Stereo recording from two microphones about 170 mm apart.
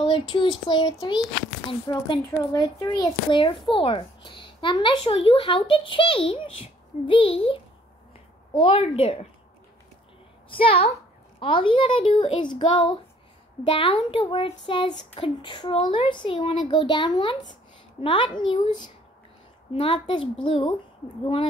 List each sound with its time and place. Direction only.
0.0 s a child's voice: 30° left (ahead or behind)
10.5 s a woman's voice: 30° left (ahead or behind)